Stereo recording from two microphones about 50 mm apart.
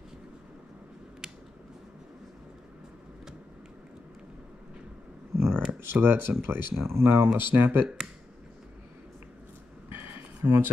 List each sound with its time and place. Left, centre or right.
5.3 s a sound: right
5.7 s speech: right
6.3 s speech: right
7.3 s speech: right
10.4 s speech: right